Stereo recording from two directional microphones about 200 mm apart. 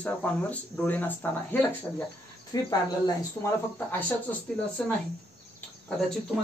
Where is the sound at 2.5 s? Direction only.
20° left (ahead or behind).